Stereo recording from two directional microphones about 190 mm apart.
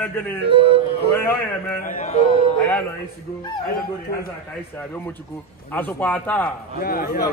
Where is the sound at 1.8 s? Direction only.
40° left (ahead or behind).